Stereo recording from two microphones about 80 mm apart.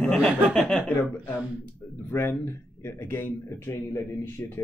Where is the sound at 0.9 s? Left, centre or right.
Left.